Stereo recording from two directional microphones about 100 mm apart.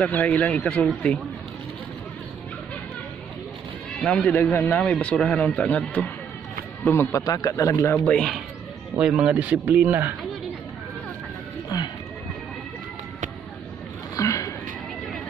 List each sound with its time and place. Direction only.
0.1 s speech: 15° left (ahead or behind)
4.0 s speech: 10° left (ahead or behind)
4.4 s a man's voice: 20° left (ahead or behind)
6.9 s a man's voice: 25° left (ahead or behind)
7.2 s a man's voice: 40° left (ahead or behind)
7.9 s speech: 10° left (ahead or behind)
8.9 s speech: 10° right (ahead or behind)
11.7 s speech: 40° left (ahead or behind)
14.1 s a sound: 35° left (ahead or behind)